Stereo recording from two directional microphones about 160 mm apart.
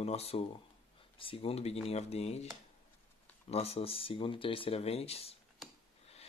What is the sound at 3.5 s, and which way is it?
Speech, 40° left (ahead or behind).